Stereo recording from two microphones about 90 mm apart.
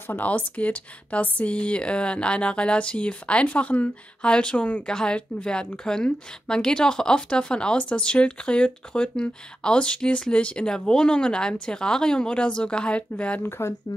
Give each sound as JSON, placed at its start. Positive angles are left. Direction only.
{"t": 0.0, "sound": "speech", "side_deg": 20}
{"t": 13.4, "sound": "speech", "side_deg": 25}